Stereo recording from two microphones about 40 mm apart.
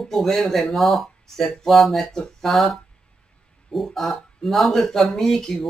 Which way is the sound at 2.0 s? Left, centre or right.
Centre.